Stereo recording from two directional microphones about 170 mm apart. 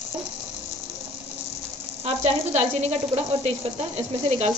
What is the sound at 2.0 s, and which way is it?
A woman's voice, 40° right (ahead or behind).